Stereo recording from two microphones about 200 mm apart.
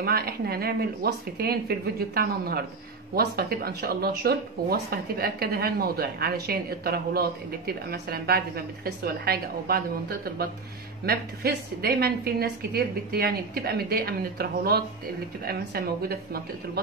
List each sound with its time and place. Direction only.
0.0 s speech: 50° right (ahead or behind)